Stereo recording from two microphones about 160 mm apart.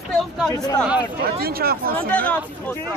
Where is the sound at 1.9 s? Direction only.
10° left (ahead or behind).